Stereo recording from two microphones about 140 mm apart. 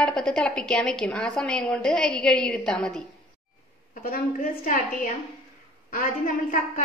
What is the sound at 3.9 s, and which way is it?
A woman's voice, 80° left.